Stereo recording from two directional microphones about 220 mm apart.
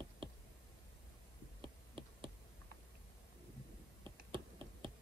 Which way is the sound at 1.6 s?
25° right (ahead or behind).